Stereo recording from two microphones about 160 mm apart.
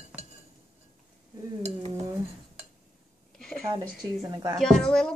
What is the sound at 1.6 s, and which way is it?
Dishes, 40° right (ahead or behind).